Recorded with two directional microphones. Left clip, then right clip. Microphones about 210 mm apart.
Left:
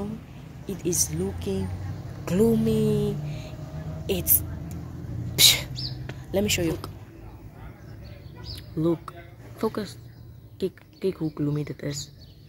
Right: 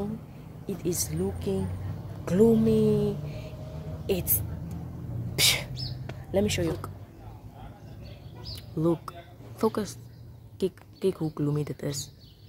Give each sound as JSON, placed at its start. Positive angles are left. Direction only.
{"t": 0.7, "sound": "speech", "side_deg": -5}
{"t": 4.0, "sound": "a sound", "side_deg": -5}
{"t": 8.5, "sound": "speech", "side_deg": -5}
{"t": 10.6, "sound": "speech", "side_deg": -10}